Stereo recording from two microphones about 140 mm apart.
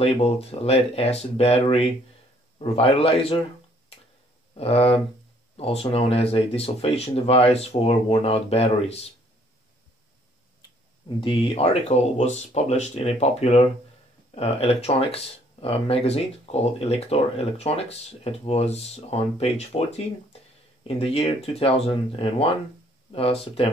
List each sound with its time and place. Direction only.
0.0 s speech: 45° left (ahead or behind)
4.6 s speech: 45° left (ahead or behind)
11.1 s speech: 40° left (ahead or behind)